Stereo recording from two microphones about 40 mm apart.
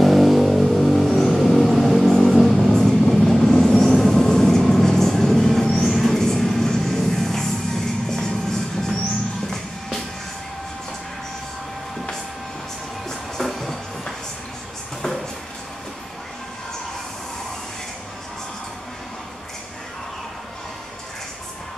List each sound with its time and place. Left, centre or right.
0.0 s vehicle: centre
8.1 s music: centre
13.4 s music: centre